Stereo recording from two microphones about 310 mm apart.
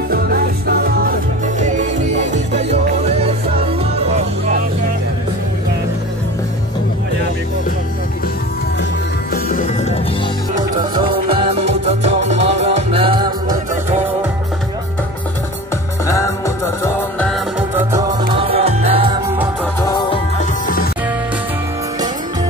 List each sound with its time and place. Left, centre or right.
0.1 s music: right
9.3 s music: left
10.8 s music: centre
16.1 s music: centre
18.3 s music: centre
19.6 s music: centre; by 20.9 s left